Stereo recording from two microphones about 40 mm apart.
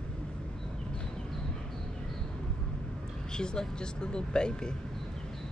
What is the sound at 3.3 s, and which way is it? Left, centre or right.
Speech, left.